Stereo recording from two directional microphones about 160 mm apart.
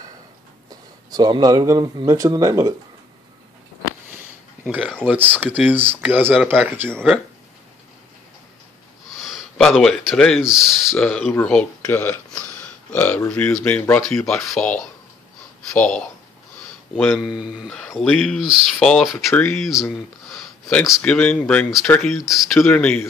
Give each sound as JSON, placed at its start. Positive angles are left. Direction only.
{"t": 0.7, "sound": "speech", "side_deg": -25}
{"t": 5.0, "sound": "speech", "side_deg": -10}
{"t": 9.2, "sound": "speech", "side_deg": 0}
{"t": 11.3, "sound": "speech", "side_deg": 10}
{"t": 22.2, "sound": "speech", "side_deg": 0}